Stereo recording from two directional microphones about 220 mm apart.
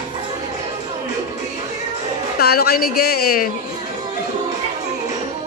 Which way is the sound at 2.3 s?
45° left (ahead or behind).